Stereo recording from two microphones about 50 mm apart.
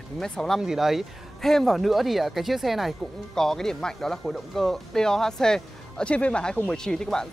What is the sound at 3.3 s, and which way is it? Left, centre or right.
Speech, centre.